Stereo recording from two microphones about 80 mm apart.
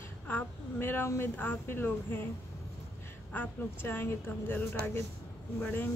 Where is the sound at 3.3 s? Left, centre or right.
Left.